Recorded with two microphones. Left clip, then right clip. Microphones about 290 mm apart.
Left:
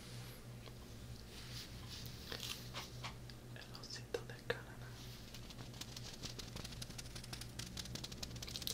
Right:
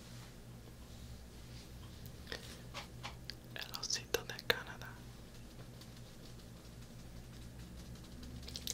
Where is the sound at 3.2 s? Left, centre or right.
Centre.